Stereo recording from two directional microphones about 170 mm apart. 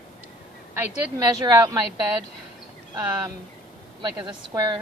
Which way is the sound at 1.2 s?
20° right (ahead or behind).